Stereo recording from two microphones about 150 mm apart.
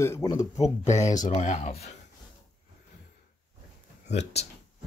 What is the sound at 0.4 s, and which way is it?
Speech, 50° left (ahead or behind).